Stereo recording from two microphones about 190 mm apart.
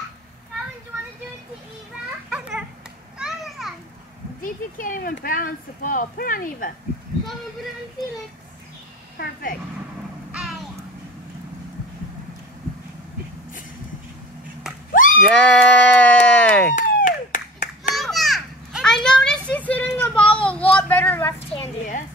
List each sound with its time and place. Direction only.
2.2 s children playing: 5° right (ahead or behind)
4.4 s speech: 45° left (ahead or behind)
9.2 s speech: 50° left (ahead or behind)
14.9 s a sound: 45° left (ahead or behind)
15.2 s speech: 5° left (ahead or behind)
16.7 s clapping: 45° left (ahead or behind)
17.9 s children playing: centre (ahead or behind)
19.0 s a sound: 5° left (ahead or behind)
21.4 s a woman's voice: 35° left (ahead or behind)